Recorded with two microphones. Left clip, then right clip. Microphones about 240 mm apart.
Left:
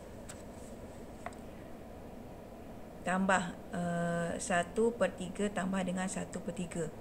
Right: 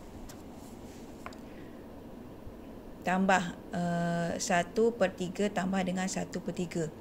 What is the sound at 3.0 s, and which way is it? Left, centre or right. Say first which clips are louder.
A woman's voice: right 4 dB; centre.